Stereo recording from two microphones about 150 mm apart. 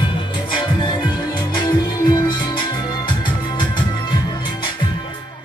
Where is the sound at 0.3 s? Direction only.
30° left (ahead or behind).